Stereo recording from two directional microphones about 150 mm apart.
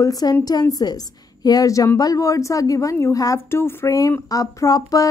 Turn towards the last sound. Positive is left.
turn(degrees=25)  # may be behind; listen again after turning